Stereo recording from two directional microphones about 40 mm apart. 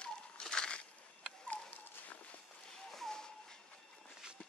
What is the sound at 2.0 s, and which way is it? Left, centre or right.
Walk, left.